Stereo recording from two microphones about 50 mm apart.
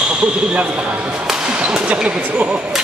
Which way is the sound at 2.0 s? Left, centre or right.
Right.